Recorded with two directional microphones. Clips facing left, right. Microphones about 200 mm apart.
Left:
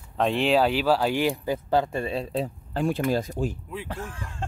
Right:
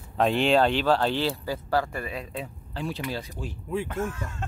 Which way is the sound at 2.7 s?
50° left (ahead or behind).